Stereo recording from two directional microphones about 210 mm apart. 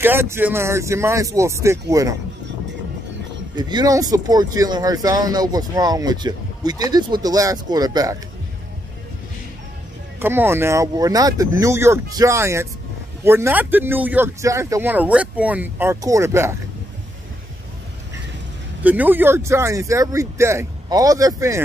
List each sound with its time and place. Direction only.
0.0 s speech: 10° right (ahead or behind)
3.5 s speech: 20° right (ahead or behind)
10.1 s speech: 10° right (ahead or behind)
18.8 s speech: 10° right (ahead or behind)